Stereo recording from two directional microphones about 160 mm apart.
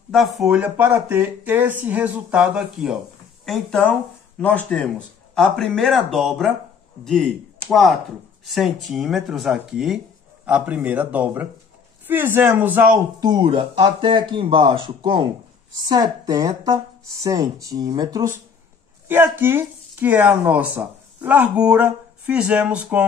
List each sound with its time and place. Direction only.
0.1 s speech: centre (ahead or behind)
13.2 s speech: 30° right (ahead or behind); by 23.0 s 10° right (ahead or behind)